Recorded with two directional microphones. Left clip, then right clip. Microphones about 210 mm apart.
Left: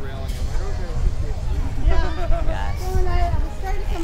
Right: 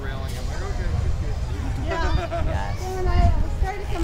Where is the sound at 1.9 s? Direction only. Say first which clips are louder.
Right 2 dB; 25° right (ahead or behind).